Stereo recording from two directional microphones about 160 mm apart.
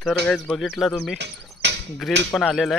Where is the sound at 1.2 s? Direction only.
90° right.